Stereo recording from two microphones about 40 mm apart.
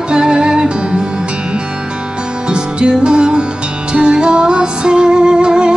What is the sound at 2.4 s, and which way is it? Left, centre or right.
Music, right.